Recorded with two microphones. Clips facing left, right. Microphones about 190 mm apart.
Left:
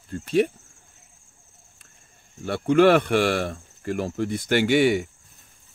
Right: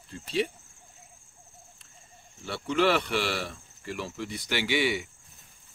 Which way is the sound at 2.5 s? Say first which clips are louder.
Left 8 dB; 50° left (ahead or behind).